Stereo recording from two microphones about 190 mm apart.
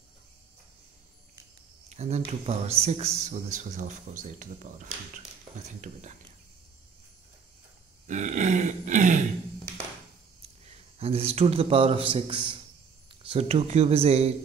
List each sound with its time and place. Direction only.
1.9 s speech: 35° right (ahead or behind)
8.1 s grunt: 40° right (ahead or behind)
11.0 s speech: 30° right (ahead or behind)